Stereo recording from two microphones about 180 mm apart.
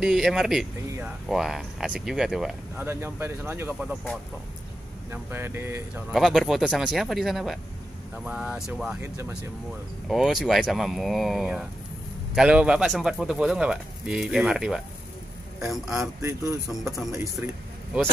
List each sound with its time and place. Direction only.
0.0 s speech: centre (ahead or behind)
0.8 s a sound: 15° right (ahead or behind)
1.3 s speech: centre (ahead or behind)
2.9 s speech: 15° right (ahead or behind)
5.1 s speech: 10° right (ahead or behind)
6.1 s speech: centre (ahead or behind)
9.0 s speech: 15° right (ahead or behind)
10.0 s speech: centre (ahead or behind)
16.2 s speech: 15° right (ahead or behind)